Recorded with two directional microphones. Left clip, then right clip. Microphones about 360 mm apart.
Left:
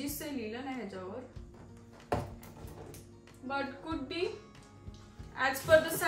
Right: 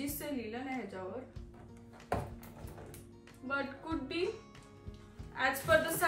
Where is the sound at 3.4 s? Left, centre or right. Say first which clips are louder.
Left 1 dB; centre.